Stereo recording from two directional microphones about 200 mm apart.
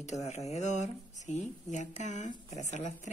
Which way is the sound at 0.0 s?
35° left (ahead or behind).